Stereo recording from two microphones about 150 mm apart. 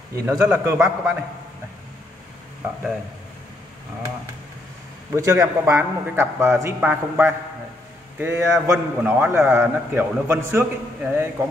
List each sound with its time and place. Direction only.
0.1 s a man's voice: 20° right (ahead or behind)
5.1 s a man's voice: 15° right (ahead or behind)